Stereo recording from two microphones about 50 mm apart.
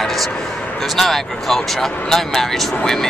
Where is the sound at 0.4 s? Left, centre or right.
Centre.